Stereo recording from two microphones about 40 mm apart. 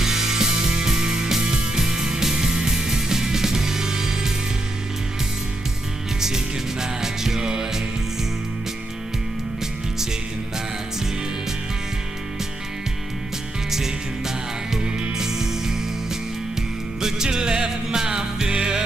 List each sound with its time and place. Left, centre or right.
0.0 s music: centre
6.2 s music: centre
13.7 s music: centre
17.0 s music: centre